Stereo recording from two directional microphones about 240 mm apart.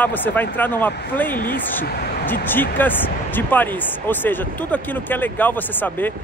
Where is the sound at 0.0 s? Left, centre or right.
Centre.